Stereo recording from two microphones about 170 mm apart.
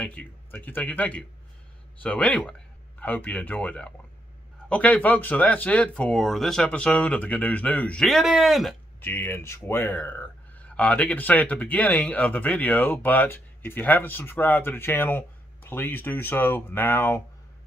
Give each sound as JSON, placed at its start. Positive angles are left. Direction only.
{"t": 0.0, "sound": "speech", "side_deg": 10}
{"t": 9.0, "sound": "speech", "side_deg": 10}